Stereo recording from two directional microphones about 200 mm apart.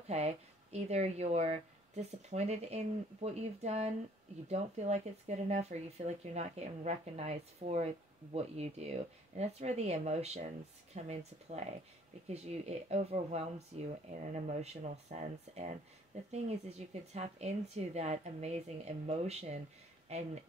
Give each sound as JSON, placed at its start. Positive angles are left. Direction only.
{"t": 0.1, "sound": "speech", "side_deg": -30}